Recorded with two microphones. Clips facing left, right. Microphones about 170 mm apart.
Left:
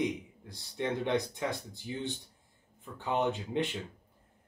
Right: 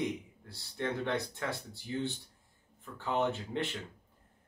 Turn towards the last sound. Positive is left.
turn(degrees=15)  # may be behind; listen again after turning